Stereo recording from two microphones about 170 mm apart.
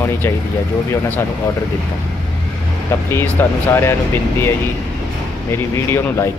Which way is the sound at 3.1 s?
15° left (ahead or behind).